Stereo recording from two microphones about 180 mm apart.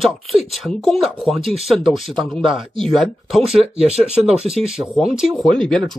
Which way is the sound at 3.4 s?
35° right (ahead or behind).